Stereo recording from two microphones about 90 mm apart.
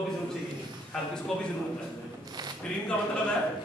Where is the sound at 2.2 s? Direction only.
50° right (ahead or behind).